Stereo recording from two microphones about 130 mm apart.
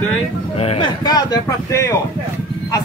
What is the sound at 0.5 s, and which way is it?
Speech, 45° left (ahead or behind).